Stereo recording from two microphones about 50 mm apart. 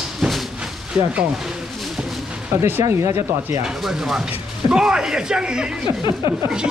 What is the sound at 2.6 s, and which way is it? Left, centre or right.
Speech, right.